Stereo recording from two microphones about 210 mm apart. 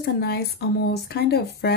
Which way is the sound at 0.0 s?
50° left (ahead or behind).